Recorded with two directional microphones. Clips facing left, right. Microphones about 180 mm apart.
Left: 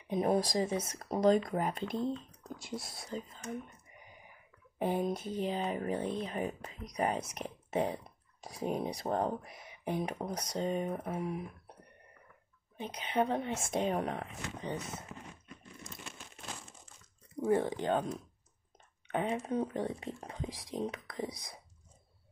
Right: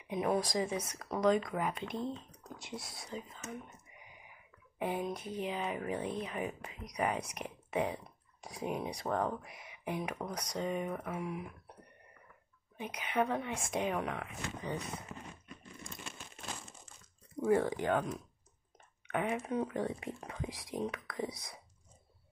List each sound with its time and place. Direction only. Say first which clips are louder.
0.1 s speech: left 3 dB; 35° left (ahead or behind)
4.7 s speech: left 4 dB; 35° left (ahead or behind)
7.3 s a sound: left 2 dB; 30° left (ahead or behind)
8.6 s speech: left 2 dB; 35° left (ahead or behind)
12.7 s speech: left 1 dB; 25° left (ahead or behind)
17.4 s speech: even; 20° left (ahead or behind)
19.1 s speech: left 1 dB; 30° left (ahead or behind)